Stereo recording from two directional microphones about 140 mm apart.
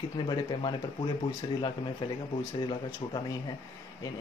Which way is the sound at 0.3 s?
30° left (ahead or behind).